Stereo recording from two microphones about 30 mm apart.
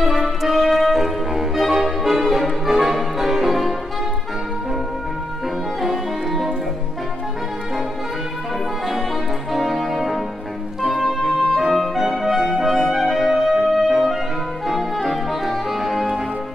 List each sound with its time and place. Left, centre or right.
0.0 s music: centre
5.8 s music: centre
9.5 s music: centre
11.6 s clarinet: centre
12.0 s music: centre